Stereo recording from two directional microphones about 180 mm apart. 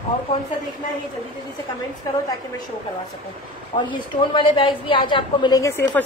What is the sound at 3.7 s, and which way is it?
A woman's voice, 25° left (ahead or behind).